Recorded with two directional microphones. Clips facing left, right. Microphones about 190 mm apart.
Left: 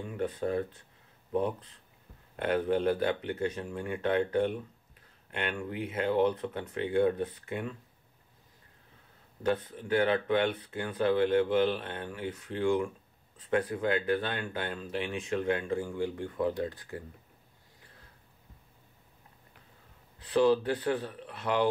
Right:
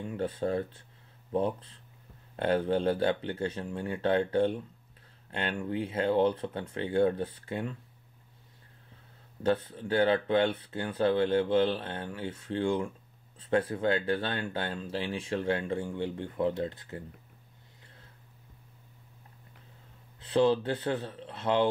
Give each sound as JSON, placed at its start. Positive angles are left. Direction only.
{"t": 0.2, "sound": "speech", "side_deg": -30}
{"t": 9.4, "sound": "speech", "side_deg": -25}
{"t": 20.2, "sound": "a man's voice", "side_deg": -25}